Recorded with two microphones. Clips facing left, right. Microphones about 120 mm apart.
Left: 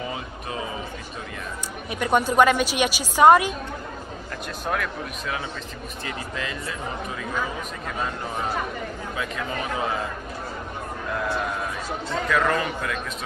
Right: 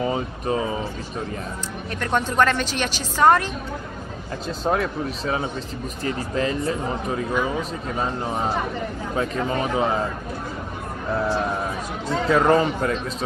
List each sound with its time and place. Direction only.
0.0 s speech: 35° right (ahead or behind)
1.9 s a woman's voice: 10° left (ahead or behind)
4.6 s speech: 30° right (ahead or behind)
11.1 s speech: 30° right (ahead or behind)